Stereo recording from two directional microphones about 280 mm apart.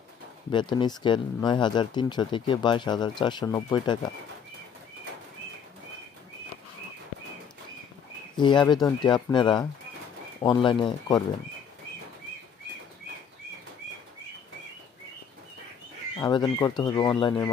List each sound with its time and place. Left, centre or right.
0.5 s speech: centre
8.4 s speech: centre
16.2 s speech: centre